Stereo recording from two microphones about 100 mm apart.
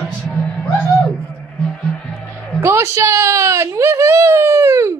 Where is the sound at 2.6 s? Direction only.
30° right (ahead or behind).